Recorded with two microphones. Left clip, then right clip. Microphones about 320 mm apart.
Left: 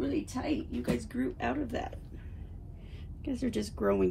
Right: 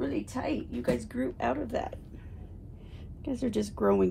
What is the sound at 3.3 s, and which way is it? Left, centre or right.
Speech, right.